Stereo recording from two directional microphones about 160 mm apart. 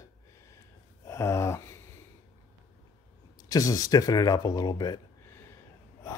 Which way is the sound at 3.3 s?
20° left (ahead or behind).